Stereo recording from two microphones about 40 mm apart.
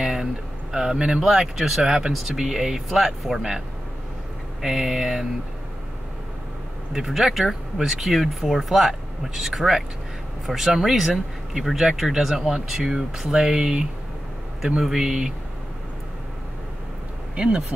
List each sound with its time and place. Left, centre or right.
0.0 s a sound: centre
1.3 s speech: centre
4.6 s speech: centre
6.9 s speech: centre
14.8 s speech: centre
17.4 s speech: right